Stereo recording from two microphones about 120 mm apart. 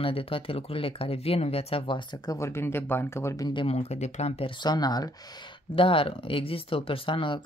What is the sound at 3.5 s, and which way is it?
Speech, 45° left (ahead or behind).